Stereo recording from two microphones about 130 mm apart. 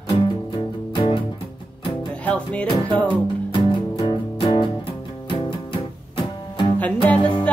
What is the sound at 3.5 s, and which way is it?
Music, 40° left (ahead or behind).